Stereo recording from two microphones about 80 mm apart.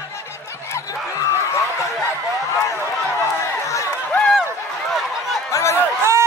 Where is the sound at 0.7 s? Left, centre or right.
Left.